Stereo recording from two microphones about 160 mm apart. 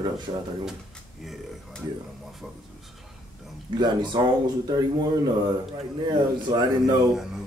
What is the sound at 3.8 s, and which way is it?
Speech, 25° right (ahead or behind).